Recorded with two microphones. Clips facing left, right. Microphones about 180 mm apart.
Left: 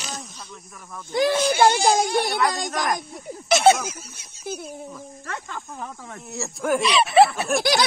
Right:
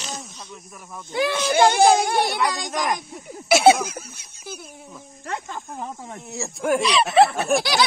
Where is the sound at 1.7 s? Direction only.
55° right (ahead or behind).